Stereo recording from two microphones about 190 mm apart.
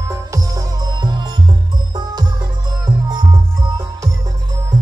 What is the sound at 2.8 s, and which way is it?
Music, 20° right (ahead or behind).